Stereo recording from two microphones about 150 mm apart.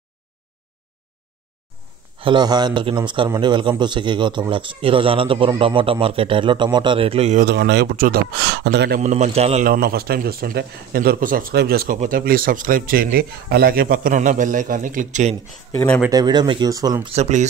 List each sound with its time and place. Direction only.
2.1 s speech: 35° right (ahead or behind)
7.4 s speech: 90° right
9.0 s a man's voice: 50° right (ahead or behind)
9.7 s speech: 90° right
12.0 s speech: 70° right (ahead or behind); by 15.3 s 55° right (ahead or behind)
16.1 s speech: 30° right (ahead or behind)
17.1 s a man's voice: 50° right (ahead or behind)